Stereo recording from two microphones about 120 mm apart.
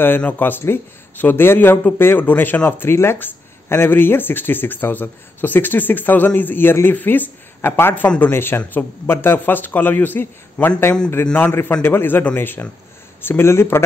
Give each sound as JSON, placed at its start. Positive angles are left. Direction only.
{"t": 0.0, "sound": "speech", "side_deg": 15}